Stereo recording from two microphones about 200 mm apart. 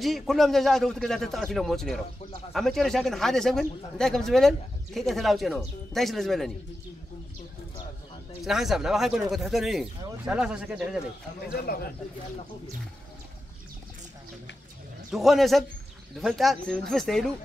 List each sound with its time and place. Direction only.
0.0 s speech: centre (ahead or behind)
8.4 s speech: centre (ahead or behind)
11.4 s a man's voice: 50° left (ahead or behind)
15.0 s speech: centre (ahead or behind)